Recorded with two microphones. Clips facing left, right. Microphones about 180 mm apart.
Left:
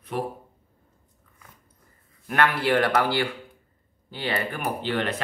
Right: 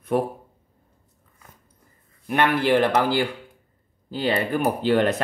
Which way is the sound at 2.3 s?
20° right (ahead or behind).